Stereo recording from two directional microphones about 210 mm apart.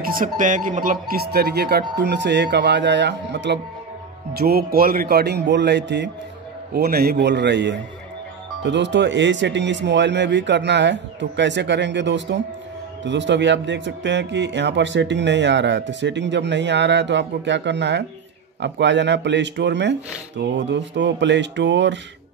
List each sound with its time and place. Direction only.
0.0 s speech: 40° right (ahead or behind); by 22.0 s 60° right (ahead or behind)